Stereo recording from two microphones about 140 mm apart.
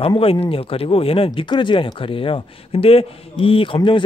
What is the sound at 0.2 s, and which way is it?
Speech, 40° left (ahead or behind).